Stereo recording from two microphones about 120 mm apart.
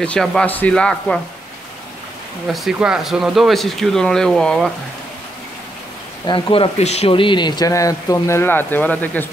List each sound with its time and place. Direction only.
0.0 s speech: 5° left (ahead or behind)
2.4 s speech: centre (ahead or behind)
6.2 s speech: 45° left (ahead or behind)
6.8 s speech: 65° left (ahead or behind); by 9.3 s 15° left (ahead or behind)